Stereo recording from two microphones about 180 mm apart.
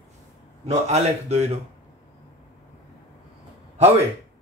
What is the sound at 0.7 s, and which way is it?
Speech, 35° right (ahead or behind).